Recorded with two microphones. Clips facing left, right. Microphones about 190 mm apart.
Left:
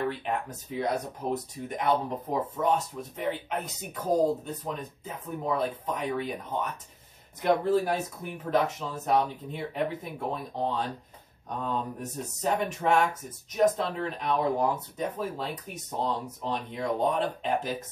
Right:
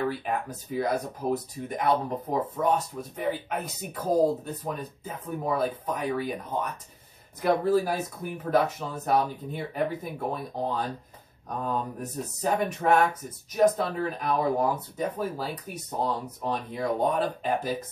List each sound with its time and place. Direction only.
0.0 s speech: 5° right (ahead or behind)